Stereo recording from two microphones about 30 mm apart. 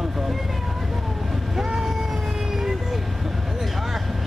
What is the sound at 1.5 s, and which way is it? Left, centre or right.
Vehicle, centre.